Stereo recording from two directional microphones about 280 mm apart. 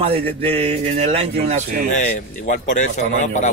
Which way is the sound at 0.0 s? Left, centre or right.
Right.